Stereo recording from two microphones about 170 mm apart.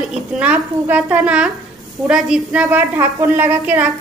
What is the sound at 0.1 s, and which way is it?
A woman's voice, 5° right (ahead or behind).